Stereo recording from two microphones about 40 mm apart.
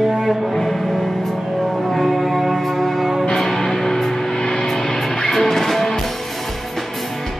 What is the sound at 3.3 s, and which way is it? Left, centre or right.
Music, centre.